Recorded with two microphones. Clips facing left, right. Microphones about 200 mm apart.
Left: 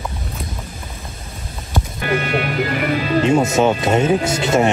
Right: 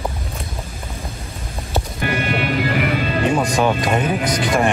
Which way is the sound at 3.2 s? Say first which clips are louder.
Left 3 dB; 25° left (ahead or behind).